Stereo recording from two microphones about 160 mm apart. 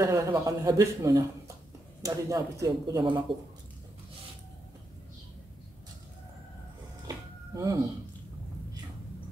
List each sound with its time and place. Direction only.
0.0 s a man's voice: 20° right (ahead or behind)
7.1 s music: 20° right (ahead or behind)